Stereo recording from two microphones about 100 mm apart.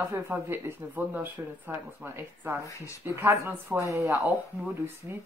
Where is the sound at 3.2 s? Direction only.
25° right (ahead or behind).